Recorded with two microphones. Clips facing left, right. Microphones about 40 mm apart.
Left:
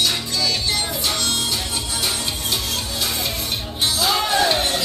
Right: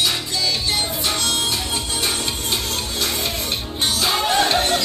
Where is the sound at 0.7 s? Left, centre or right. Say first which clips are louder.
Right 1 dB; right.